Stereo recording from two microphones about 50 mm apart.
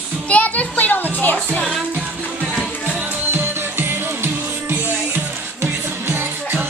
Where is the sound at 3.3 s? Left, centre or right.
Right.